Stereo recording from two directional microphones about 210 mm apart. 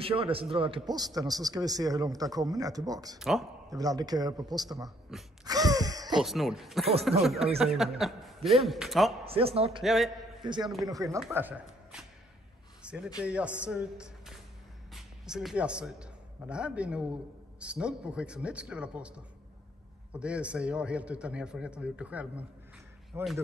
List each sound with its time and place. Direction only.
0.0 s a man's voice: 25° right (ahead or behind)
3.2 s a man's voice: centre (ahead or behind)
3.7 s a man's voice: 15° right (ahead or behind)
5.4 s gasp: 20° right (ahead or behind)
6.2 s a man's voice: centre (ahead or behind)
9.2 s speech: 30° right (ahead or behind)
9.7 s a man's voice: centre (ahead or behind)
10.4 s a man's voice: 20° right (ahead or behind); by 12.1 s 5° right (ahead or behind)
12.8 s a sound: 5° right (ahead or behind)
13.2 s a man's voice: 5° right (ahead or behind)